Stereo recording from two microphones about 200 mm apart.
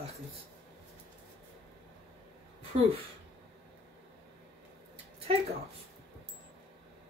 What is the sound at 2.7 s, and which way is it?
Speech, 35° right (ahead or behind).